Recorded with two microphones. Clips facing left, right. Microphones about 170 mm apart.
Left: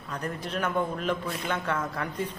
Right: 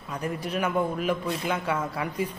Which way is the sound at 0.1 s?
10° right (ahead or behind).